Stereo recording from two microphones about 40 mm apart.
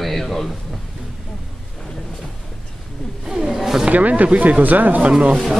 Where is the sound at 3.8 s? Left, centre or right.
Right.